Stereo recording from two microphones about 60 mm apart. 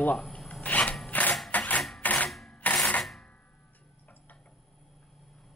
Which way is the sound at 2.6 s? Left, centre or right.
Left.